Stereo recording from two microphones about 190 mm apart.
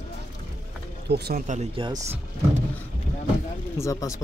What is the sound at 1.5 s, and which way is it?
Speech, 35° right (ahead or behind).